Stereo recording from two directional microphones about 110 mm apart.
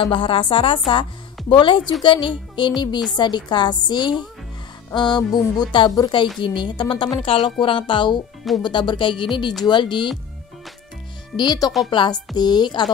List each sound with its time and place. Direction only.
0.0 s speech: 50° left (ahead or behind)
11.3 s a woman's voice: 40° left (ahead or behind)